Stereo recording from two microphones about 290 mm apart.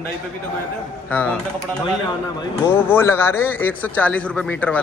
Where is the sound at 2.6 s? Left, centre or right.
Centre.